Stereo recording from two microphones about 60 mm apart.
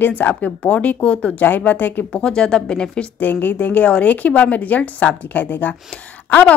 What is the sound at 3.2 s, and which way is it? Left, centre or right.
A woman's voice, left.